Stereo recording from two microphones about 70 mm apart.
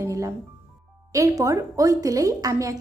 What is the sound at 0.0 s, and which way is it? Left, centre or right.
Music, right.